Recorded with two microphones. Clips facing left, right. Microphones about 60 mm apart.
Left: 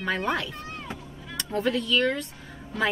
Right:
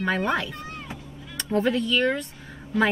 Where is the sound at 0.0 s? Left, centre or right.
Centre.